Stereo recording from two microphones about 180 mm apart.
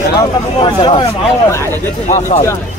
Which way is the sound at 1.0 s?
15° left (ahead or behind).